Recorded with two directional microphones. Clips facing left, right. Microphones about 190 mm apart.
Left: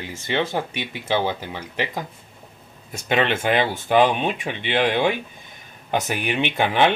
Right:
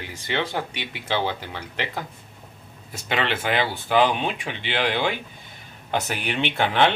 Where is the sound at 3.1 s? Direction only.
15° left (ahead or behind).